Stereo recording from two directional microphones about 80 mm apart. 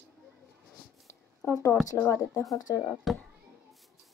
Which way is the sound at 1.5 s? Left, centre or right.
Left.